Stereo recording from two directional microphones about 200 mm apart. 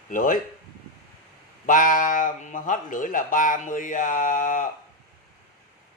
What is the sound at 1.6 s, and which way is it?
Speech, 40° left (ahead or behind).